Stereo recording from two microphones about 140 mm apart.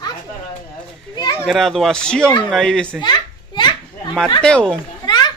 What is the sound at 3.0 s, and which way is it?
Children playing, 30° left (ahead or behind).